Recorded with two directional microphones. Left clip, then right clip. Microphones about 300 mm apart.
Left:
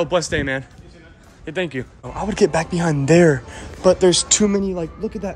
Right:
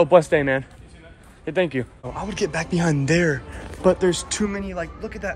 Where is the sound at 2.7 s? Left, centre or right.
Centre.